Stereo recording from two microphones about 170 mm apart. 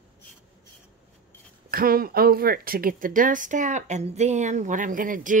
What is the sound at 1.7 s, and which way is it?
Speech, 60° right (ahead or behind).